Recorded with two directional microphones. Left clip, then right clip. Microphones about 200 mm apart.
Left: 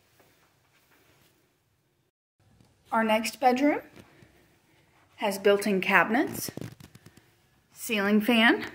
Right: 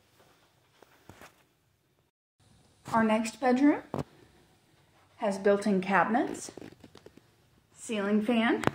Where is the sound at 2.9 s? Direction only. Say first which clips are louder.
Left 2 dB; 5° left (ahead or behind).